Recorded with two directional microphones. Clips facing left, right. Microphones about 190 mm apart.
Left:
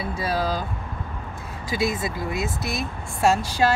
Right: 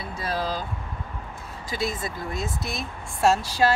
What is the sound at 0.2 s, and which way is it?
Vehicle, 10° left (ahead or behind).